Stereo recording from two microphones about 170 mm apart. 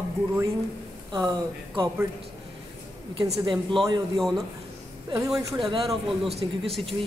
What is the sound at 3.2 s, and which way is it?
Speech, 30° right (ahead or behind).